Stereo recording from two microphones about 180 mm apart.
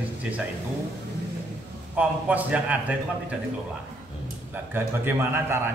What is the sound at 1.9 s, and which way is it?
A man's voice, 10° right (ahead or behind).